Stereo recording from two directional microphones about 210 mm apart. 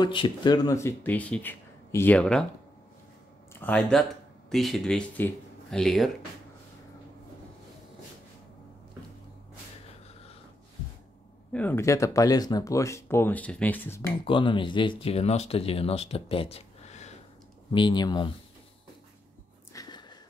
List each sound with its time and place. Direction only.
0.0 s speech: 20° left (ahead or behind); by 2.4 s 5° left (ahead or behind)
3.6 s speech: 5° left (ahead or behind)
11.5 s speech: 10° left (ahead or behind)
14.2 s speech: 25° left (ahead or behind)
17.6 s speech: 20° left (ahead or behind)
19.7 s a sound: 20° left (ahead or behind)